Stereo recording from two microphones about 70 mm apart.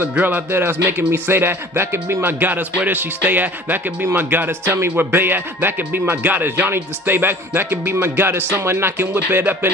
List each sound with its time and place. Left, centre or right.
0.1 s speech: right